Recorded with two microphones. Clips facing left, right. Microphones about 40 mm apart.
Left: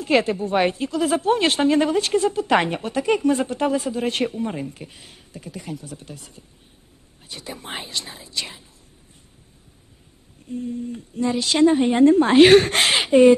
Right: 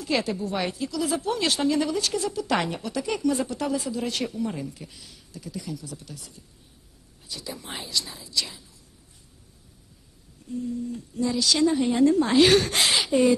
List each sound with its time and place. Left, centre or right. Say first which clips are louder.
0.0 s a woman's voice: left 7 dB; left
10.5 s a woman's voice: left 2 dB; left